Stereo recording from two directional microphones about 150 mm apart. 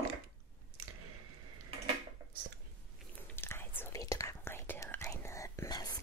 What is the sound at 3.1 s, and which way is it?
Whispering, 15° left (ahead or behind).